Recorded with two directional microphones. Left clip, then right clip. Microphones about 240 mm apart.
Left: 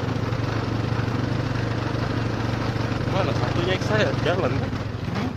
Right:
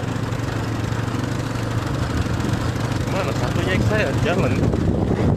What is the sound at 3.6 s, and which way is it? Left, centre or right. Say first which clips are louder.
Speech: right 1 dB; centre.